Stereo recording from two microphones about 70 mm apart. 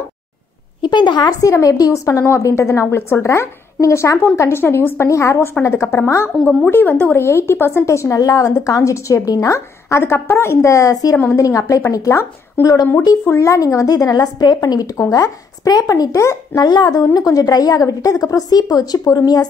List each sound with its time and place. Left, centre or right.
0.8 s a woman's voice: left
1.4 s a woman's voice: left
6.4 s a woman's voice: left
8.2 s a woman's voice: left
13.3 s a woman's voice: left
15.0 s a woman's voice: left
16.5 s a woman's voice: left